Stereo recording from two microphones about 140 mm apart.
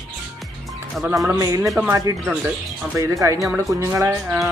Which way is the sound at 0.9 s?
Centre (ahead or behind).